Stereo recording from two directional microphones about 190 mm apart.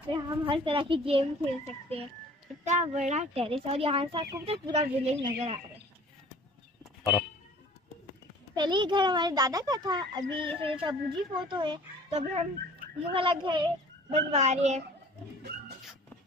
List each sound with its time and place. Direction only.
0.1 s a child's voice: 25° right (ahead or behind)
6.8 s a sound: centre (ahead or behind)
8.5 s a child's voice: 25° right (ahead or behind)
14.3 s speech: 35° right (ahead or behind)